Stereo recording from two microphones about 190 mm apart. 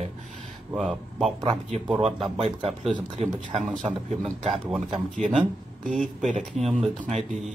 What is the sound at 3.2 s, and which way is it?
Speech, 30° right (ahead or behind).